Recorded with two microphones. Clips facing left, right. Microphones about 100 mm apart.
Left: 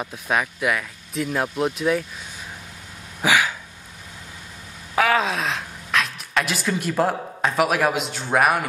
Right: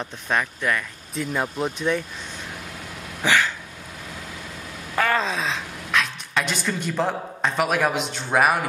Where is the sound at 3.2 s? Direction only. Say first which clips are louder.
Left 1 dB; 10° left (ahead or behind).